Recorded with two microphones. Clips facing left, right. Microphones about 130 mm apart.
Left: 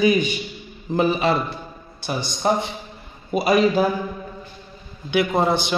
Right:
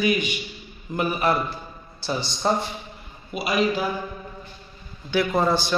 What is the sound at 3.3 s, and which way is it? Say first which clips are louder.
Speech: left 6 dB; 40° left (ahead or behind).